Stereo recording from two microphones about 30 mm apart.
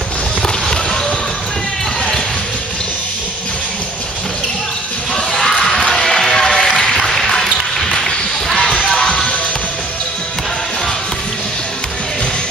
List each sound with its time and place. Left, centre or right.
5.1 s music: centre
7.1 s a sound: centre
8.9 s music: left